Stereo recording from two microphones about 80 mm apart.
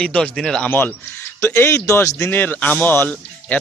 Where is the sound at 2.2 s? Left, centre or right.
Left.